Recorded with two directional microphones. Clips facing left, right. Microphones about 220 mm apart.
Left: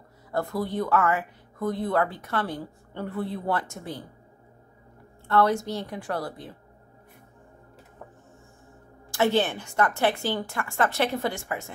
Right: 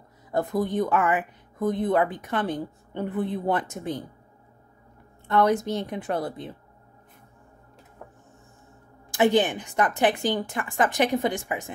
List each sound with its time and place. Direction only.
0.3 s speech: 20° right (ahead or behind)
5.3 s speech: 20° right (ahead or behind)
9.1 s a woman's voice: 15° right (ahead or behind)